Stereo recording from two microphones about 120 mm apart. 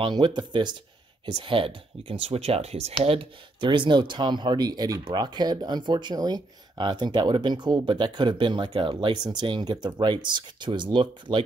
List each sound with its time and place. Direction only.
0.0 s speech: 40° right (ahead or behind)